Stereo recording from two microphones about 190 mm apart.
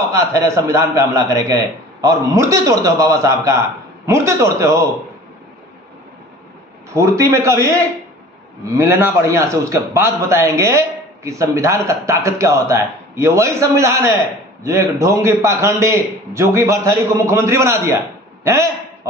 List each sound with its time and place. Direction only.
0.1 s a man's voice: 15° right (ahead or behind)
6.9 s a man's voice: 15° right (ahead or behind)
8.7 s a man's voice: 15° right (ahead or behind)